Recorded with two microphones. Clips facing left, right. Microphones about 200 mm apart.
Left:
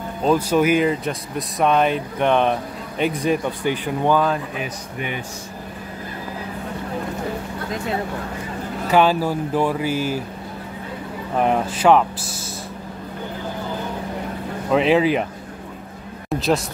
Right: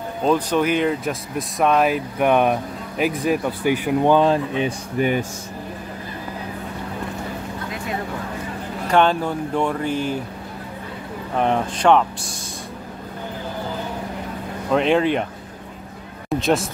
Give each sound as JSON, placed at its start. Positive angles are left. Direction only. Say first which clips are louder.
{"t": 0.2, "sound": "speech", "louder": "left 1 dB", "side_deg": 5}
{"t": 4.1, "sound": "speech", "louder": "right 2 dB", "side_deg": -30}
{"t": 8.8, "sound": "speech", "louder": "left 1 dB", "side_deg": 5}
{"t": 11.3, "sound": "speech", "louder": "left 1 dB", "side_deg": 5}
{"t": 14.7, "sound": "speech", "louder": "left 1 dB", "side_deg": 5}
{"t": 16.3, "sound": "speech", "louder": "right 1 dB", "side_deg": 0}